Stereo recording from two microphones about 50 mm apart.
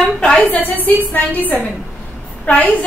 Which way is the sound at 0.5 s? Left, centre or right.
Left.